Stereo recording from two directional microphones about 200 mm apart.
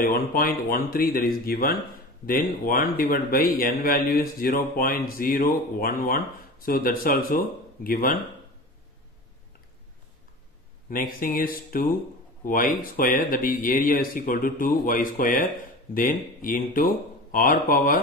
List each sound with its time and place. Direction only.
0.0 s speech: 45° left (ahead or behind)
10.9 s speech: 45° left (ahead or behind)